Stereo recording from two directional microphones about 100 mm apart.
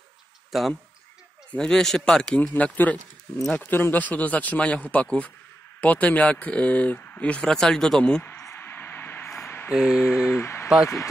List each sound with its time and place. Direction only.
0.5 s speech: centre (ahead or behind)
8.2 s a sound: 25° left (ahead or behind)
9.7 s mantra: 5° right (ahead or behind)
10.3 s speech: 25° left (ahead or behind)